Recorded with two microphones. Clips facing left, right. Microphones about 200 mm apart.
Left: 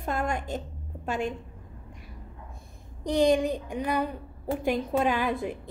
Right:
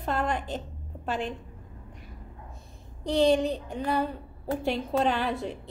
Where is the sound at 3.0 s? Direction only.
15° left (ahead or behind).